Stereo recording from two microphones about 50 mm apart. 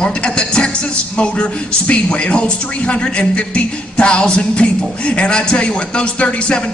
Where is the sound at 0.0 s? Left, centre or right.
Centre.